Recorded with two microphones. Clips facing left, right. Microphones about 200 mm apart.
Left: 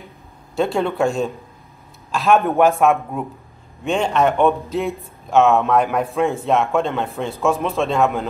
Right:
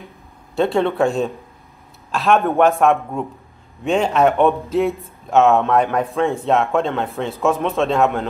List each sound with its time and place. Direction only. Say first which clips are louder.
0.6 s a man's voice: right 2 dB; centre (ahead or behind)